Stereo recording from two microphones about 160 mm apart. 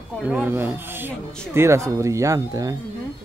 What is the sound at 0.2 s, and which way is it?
Speech, 10° right (ahead or behind).